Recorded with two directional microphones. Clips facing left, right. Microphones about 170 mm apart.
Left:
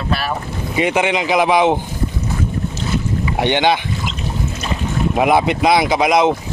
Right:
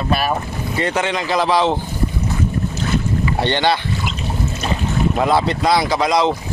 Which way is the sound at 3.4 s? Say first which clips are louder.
Left 3 dB; 15° left (ahead or behind).